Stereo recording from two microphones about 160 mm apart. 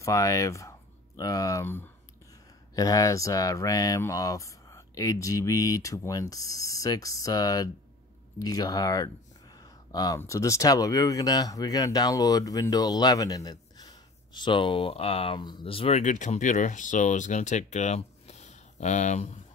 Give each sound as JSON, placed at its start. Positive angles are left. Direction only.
{"t": 0.0, "sound": "speech", "side_deg": 20}
{"t": 16.0, "sound": "speech", "side_deg": 50}